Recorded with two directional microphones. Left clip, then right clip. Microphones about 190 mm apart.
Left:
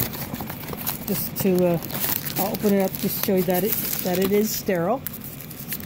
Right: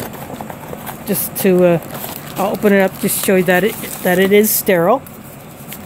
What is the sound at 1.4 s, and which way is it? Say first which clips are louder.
Speech: right 9 dB; 90° right.